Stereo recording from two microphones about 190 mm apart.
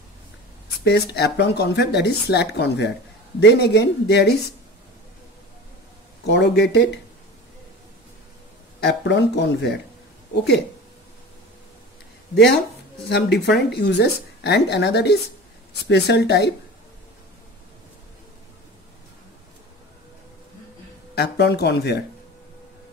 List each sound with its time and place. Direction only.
0.8 s speech: 60° left (ahead or behind)
6.2 s speech: 65° left (ahead or behind)
8.8 s speech: 70° left (ahead or behind)
13.1 s speech: 60° left (ahead or behind)
21.1 s speech: 60° left (ahead or behind)